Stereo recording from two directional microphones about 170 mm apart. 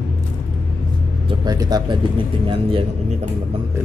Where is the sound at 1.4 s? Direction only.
20° right (ahead or behind).